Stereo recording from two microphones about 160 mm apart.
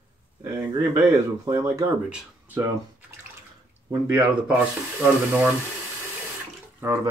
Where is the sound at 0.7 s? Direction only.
25° right (ahead or behind).